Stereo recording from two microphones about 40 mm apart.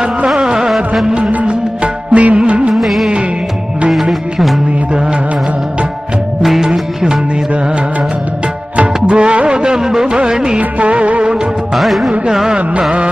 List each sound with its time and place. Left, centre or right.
0.4 s music: centre
0.7 s music: centre
1.0 s music of bollywood: centre
1.3 s music: right
2.7 s music: centre
4.9 s music: right
6.4 s music: centre
6.7 s music of bollywood: centre
7.5 s music: right
10.6 s music of bollywood: right
11.3 s music of bollywood: centre
12.3 s carnatic music: centre